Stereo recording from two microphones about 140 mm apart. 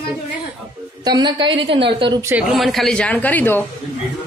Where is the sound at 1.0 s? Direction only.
30° right (ahead or behind).